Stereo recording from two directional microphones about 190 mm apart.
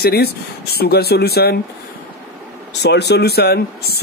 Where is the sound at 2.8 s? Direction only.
60° left (ahead or behind).